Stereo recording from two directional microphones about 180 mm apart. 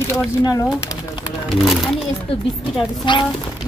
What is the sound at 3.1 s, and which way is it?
Speech, 25° left (ahead or behind).